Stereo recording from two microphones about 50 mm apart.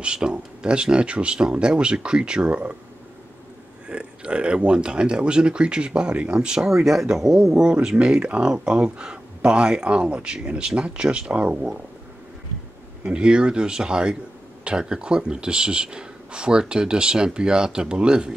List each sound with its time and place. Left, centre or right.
0.0 s speech: centre
3.9 s speech: right
6.8 s speech: centre; by 11.5 s right
13.0 s speech: centre